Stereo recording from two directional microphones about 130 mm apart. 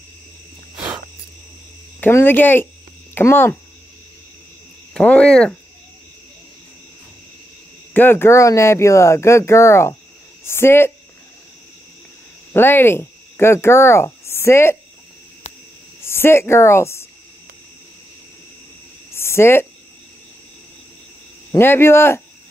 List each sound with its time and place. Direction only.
0.7 s cricket: 10° right (ahead or behind)
2.0 s speech: 15° left (ahead or behind)
4.9 s speech: 10° left (ahead or behind)
7.9 s speech: 15° left (ahead or behind)
12.5 s speech: 15° left (ahead or behind)
16.0 s a woman's voice: 20° left (ahead or behind)
19.1 s a sound: 20° left (ahead or behind)
21.5 s speech: 20° left (ahead or behind)